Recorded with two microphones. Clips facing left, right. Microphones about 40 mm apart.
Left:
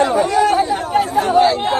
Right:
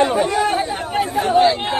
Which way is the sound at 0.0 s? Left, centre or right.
Right.